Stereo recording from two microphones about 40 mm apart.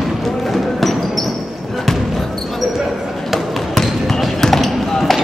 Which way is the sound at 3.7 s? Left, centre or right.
Centre.